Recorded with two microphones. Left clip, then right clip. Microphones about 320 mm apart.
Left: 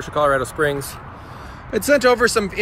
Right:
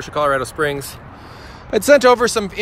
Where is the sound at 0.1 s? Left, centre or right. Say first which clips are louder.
Even; centre.